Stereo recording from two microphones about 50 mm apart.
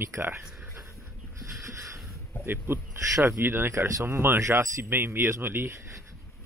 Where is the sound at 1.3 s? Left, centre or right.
Right.